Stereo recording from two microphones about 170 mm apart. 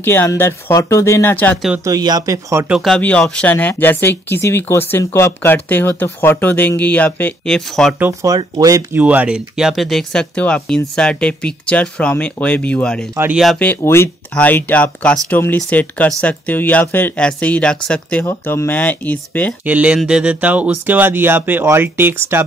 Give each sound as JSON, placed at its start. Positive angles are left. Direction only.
{"t": 0.0, "sound": "speech", "side_deg": 10}
{"t": 1.9, "sound": "speech", "side_deg": -20}
{"t": 2.7, "sound": "speech", "side_deg": 0}
{"t": 8.0, "sound": "speech", "side_deg": -20}
{"t": 9.0, "sound": "speech", "side_deg": -10}
{"t": 13.1, "sound": "speech", "side_deg": -10}
{"t": 13.4, "sound": "speech", "side_deg": 5}
{"t": 19.6, "sound": "speech", "side_deg": -10}